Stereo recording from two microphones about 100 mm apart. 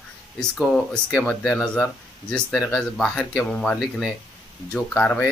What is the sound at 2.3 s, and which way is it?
Speech, 10° left (ahead or behind).